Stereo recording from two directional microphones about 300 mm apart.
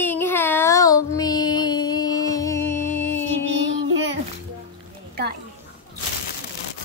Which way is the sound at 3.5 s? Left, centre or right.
Right.